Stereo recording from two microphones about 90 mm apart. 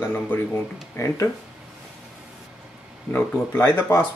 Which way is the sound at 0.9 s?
30° left (ahead or behind).